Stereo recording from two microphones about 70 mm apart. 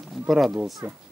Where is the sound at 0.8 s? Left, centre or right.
Right.